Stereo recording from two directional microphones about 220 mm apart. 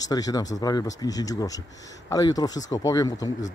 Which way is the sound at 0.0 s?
15° left (ahead or behind).